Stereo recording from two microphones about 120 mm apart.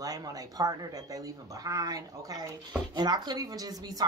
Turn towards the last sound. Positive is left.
turn(degrees=-30)  # may be behind; listen again after turning